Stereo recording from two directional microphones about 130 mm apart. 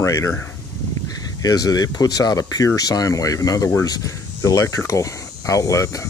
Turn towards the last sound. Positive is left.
turn(degrees=25)  # may be behind; listen again after turning